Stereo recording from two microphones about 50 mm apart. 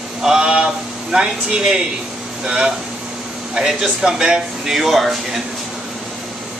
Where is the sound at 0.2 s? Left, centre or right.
Centre.